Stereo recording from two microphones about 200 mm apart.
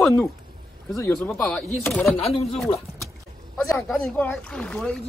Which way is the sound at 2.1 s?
30° left (ahead or behind).